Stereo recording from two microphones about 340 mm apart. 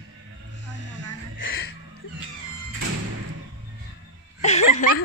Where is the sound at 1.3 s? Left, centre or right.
Left.